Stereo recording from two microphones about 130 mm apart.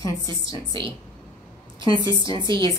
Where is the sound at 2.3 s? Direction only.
35° right (ahead or behind).